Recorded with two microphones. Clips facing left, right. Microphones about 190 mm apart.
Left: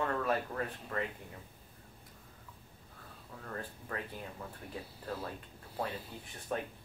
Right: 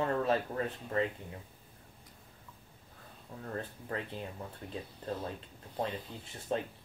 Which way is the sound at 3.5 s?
25° right (ahead or behind).